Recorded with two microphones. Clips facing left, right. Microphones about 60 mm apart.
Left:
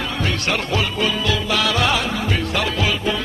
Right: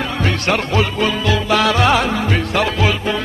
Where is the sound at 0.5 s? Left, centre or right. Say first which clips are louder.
Right 5 dB; right.